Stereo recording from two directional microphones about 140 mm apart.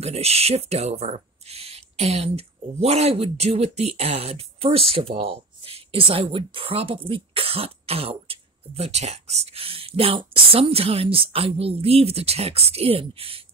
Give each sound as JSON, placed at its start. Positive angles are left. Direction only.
{"t": 0.0, "sound": "speech", "side_deg": -50}